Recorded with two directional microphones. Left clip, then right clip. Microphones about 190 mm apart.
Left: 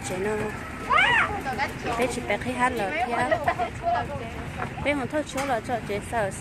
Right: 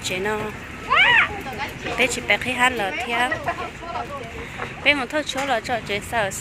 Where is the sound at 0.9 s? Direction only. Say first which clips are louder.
Right 5 dB; 70° left (ahead or behind).